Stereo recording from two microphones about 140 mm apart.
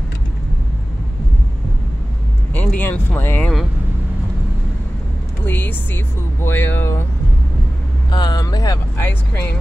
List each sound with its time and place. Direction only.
2.5 s speech: 10° left (ahead or behind)
5.4 s speech: 15° left (ahead or behind)
8.1 s speech: 30° left (ahead or behind)
8.9 s speech: 15° left (ahead or behind)